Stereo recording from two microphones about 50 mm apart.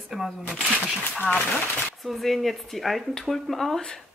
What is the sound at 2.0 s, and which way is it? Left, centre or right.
Speech, centre.